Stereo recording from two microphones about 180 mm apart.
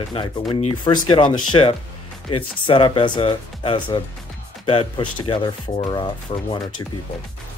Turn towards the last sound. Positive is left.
turn(degrees=25)  # may be behind; listen again after turning